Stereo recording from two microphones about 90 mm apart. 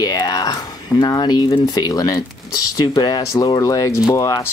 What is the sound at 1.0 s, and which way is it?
Speech, 50° left (ahead or behind).